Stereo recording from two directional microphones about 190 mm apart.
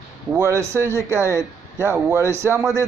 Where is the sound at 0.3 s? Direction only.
15° right (ahead or behind).